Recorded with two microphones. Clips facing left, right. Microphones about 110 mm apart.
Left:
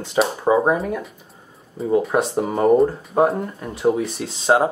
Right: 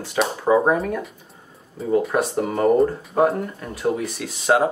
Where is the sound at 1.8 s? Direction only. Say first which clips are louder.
Left 2 dB; centre (ahead or behind).